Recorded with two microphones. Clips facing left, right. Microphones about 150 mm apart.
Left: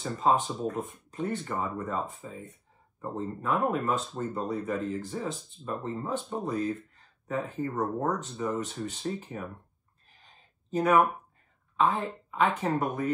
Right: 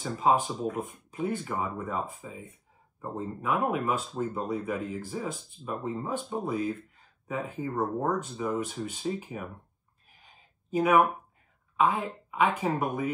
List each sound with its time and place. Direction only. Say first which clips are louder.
0.0 s speech: right 1 dB; 5° right (ahead or behind)
10.2 s a sound: right 1 dB; 5° right (ahead or behind)
11.7 s speech: even; centre (ahead or behind)